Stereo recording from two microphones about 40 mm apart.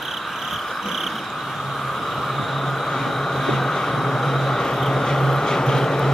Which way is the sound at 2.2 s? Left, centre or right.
Centre.